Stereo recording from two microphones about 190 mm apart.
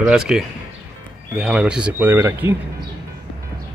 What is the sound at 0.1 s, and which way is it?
A man's voice, 5° right (ahead or behind).